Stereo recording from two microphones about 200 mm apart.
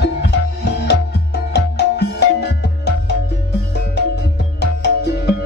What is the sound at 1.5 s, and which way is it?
Music, 55° left (ahead or behind).